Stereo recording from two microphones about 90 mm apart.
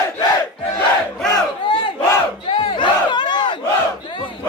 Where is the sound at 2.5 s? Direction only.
65° left (ahead or behind).